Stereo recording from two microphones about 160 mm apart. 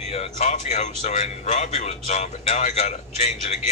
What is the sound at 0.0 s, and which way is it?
A man's voice, 40° left (ahead or behind).